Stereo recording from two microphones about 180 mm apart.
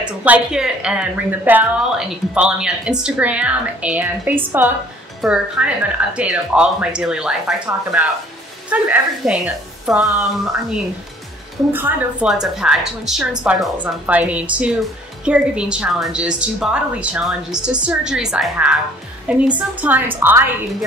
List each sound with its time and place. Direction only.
0.0 s a woman's voice: 5° right (ahead or behind)
11.7 s a woman's voice: 10° right (ahead or behind)